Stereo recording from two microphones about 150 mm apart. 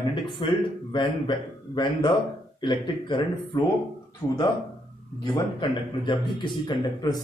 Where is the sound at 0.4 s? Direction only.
30° left (ahead or behind).